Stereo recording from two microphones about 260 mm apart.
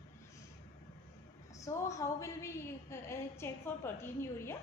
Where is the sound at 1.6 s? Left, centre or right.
Centre.